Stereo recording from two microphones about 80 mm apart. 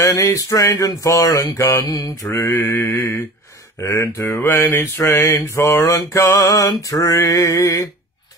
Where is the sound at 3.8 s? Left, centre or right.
Left.